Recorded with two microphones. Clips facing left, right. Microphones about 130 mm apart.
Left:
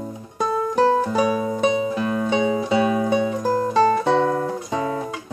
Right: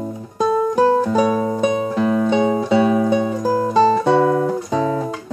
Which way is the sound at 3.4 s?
10° right (ahead or behind).